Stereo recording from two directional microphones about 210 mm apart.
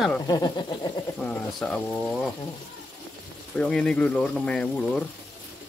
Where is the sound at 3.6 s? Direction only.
5° left (ahead or behind).